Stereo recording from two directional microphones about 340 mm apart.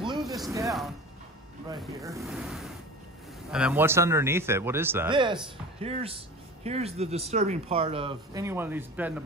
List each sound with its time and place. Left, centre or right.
0.2 s zipper: centre
1.8 s speech: centre